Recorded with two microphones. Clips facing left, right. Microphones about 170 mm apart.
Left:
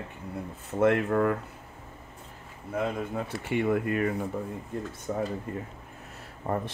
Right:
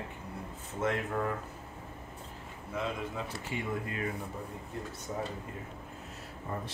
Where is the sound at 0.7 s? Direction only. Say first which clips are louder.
Left 9 dB; 60° left (ahead or behind).